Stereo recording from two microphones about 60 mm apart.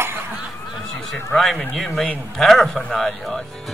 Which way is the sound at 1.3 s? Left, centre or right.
Centre.